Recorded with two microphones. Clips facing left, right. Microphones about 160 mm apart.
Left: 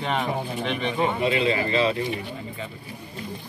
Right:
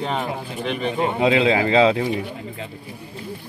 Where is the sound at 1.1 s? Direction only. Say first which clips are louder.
Right 5 dB; 90° right.